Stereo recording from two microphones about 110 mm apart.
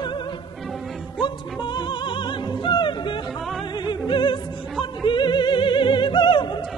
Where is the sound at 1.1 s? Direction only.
45° left (ahead or behind).